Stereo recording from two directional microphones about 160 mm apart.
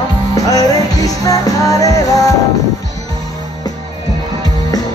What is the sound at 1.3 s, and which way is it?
Music, 20° left (ahead or behind).